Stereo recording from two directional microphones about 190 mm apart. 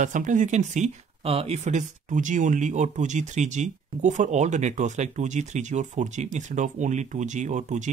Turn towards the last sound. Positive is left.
turn(degrees=-40)  # may be behind; listen again after turning